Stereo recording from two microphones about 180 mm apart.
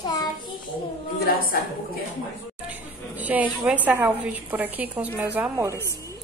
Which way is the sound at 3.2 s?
10° right (ahead or behind).